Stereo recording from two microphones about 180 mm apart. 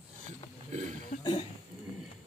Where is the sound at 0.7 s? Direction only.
40° right (ahead or behind).